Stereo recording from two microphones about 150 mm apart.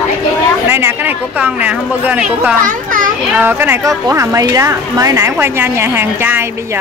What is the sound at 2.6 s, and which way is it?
Children playing, 60° right (ahead or behind).